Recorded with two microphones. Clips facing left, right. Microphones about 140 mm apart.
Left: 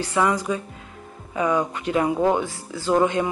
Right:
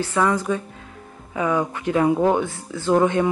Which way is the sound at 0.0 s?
15° left (ahead or behind).